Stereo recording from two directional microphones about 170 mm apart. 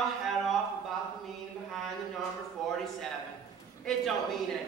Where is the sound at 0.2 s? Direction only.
Centre (ahead or behind).